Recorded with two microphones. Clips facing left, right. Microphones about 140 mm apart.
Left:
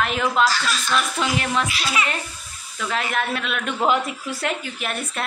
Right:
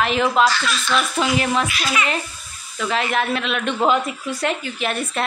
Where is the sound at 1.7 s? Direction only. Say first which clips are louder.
Right 2 dB; 30° left (ahead or behind).